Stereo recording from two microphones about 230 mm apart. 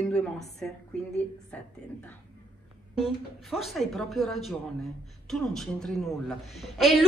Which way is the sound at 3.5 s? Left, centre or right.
Centre.